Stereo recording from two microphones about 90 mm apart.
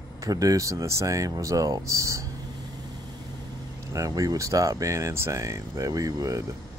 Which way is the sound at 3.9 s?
40° right (ahead or behind).